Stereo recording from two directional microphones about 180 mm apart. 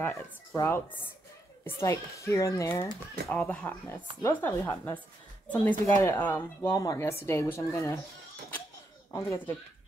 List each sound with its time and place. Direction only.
0.0 s speech: 10° left (ahead or behind)
9.1 s speech: 15° left (ahead or behind)